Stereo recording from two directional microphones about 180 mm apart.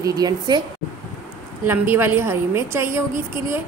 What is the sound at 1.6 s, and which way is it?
A woman's voice, 10° right (ahead or behind).